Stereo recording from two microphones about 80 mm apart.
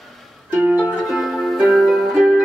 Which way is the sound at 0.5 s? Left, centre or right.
Centre.